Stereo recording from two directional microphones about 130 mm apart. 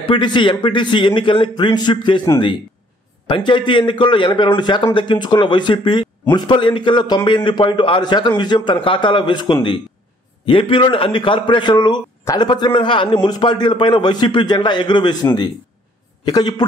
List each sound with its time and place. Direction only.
0.1 s a man's voice: 40° left (ahead or behind)
3.3 s a man's voice: 40° left (ahead or behind)
16.3 s a man's voice: 30° left (ahead or behind)